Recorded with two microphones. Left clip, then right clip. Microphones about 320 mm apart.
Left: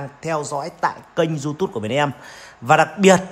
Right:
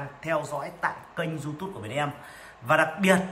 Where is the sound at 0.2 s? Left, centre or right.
Centre.